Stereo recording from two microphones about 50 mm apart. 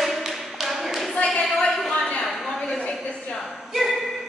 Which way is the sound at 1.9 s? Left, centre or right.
Centre.